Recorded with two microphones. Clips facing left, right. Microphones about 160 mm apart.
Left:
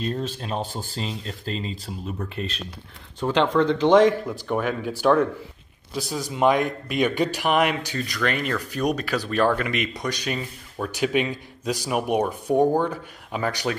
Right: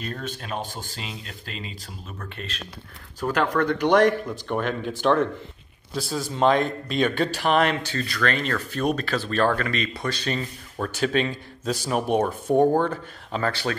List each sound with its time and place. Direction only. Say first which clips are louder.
0.0 s speech: left 5 dB; 30° left (ahead or behind)
3.3 s speech: left 3 dB; 15° left (ahead or behind)